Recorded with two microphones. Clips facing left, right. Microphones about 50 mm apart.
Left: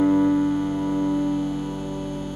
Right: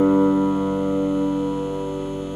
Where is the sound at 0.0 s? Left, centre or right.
Centre.